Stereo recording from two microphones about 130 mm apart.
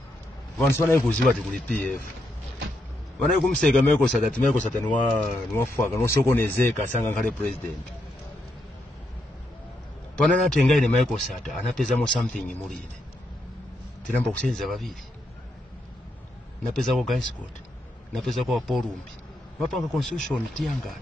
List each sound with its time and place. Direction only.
0.6 s a man's voice: 20° left (ahead or behind)
3.2 s speech: 5° left (ahead or behind)
10.1 s a man's voice: 5° left (ahead or behind)
14.2 s a man's voice: centre (ahead or behind)
16.7 s a man's voice: centre (ahead or behind)